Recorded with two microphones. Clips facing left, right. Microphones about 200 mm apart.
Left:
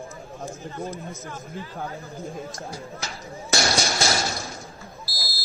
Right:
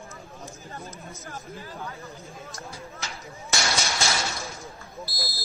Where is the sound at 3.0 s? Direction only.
35° left (ahead or behind).